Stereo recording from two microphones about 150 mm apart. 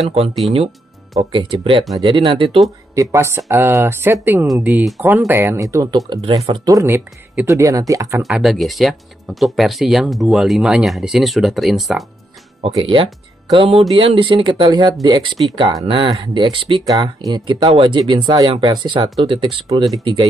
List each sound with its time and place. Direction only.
1.1 s speech: 35° right (ahead or behind)
2.9 s speech: 20° right (ahead or behind)
8.2 s speech: centre (ahead or behind)
12.6 s speech: 40° right (ahead or behind)